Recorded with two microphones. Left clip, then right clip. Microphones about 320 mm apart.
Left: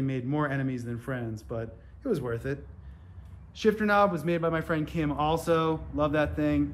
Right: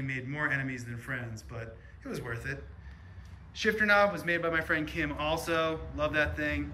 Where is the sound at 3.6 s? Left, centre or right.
Centre.